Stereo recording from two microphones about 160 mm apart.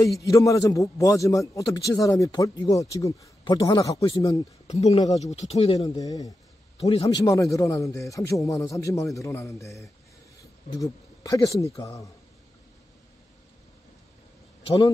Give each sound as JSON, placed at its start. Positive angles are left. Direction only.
{"t": 0.2, "sound": "a man's voice", "side_deg": 20}
{"t": 4.6, "sound": "speech", "side_deg": 45}
{"t": 5.8, "sound": "a man's voice", "side_deg": 20}
{"t": 6.8, "sound": "speech", "side_deg": 35}
{"t": 7.2, "sound": "a man's voice", "side_deg": 20}